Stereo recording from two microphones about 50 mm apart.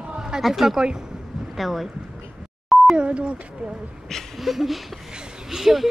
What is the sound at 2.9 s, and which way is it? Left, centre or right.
Speech, right.